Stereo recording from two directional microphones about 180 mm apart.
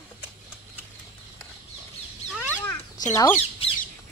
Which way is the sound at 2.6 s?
10° left (ahead or behind).